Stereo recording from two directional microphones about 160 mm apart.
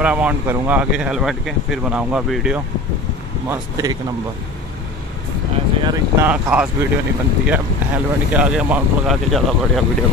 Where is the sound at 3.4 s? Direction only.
20° right (ahead or behind).